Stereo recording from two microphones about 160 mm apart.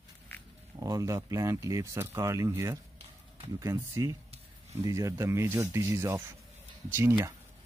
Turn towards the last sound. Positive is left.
turn(degrees=-15)  # may be behind; listen again after turning